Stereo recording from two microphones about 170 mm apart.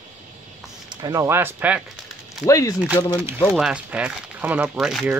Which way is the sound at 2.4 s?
20° left (ahead or behind).